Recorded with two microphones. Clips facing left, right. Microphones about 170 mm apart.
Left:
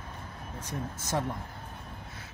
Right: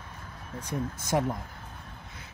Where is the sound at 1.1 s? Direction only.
20° right (ahead or behind).